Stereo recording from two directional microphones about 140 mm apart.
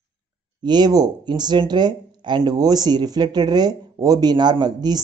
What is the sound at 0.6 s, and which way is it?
Speech, 30° right (ahead or behind).